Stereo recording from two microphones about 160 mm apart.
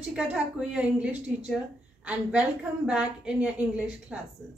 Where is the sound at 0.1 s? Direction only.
5° right (ahead or behind).